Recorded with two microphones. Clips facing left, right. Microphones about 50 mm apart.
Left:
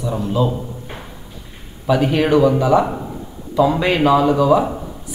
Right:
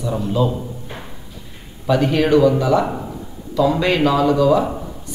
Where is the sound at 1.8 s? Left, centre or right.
Centre.